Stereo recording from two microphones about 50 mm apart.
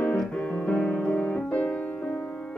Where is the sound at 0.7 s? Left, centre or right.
Left.